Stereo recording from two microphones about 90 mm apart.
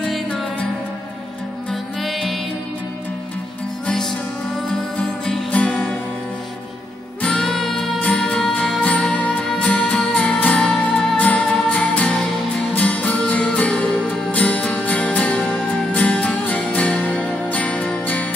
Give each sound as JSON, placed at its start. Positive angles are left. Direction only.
{"t": 0.0, "sound": "music", "side_deg": 5}
{"t": 1.7, "sound": "music", "side_deg": 0}
{"t": 3.8, "sound": "music", "side_deg": 5}
{"t": 7.2, "sound": "music", "side_deg": 10}